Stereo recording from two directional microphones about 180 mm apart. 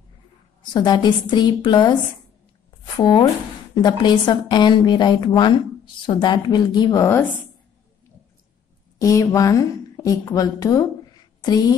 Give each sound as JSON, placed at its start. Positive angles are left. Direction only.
{"t": 0.6, "sound": "a woman's voice", "side_deg": 25}
{"t": 3.0, "sound": "a woman's voice", "side_deg": 25}
{"t": 8.9, "sound": "a woman's voice", "side_deg": 20}